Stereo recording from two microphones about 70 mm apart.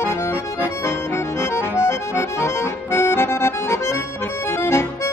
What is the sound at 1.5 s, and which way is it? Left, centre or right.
Accordion, left.